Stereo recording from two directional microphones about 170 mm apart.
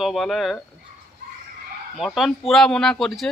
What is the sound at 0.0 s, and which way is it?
Speech, centre (ahead or behind).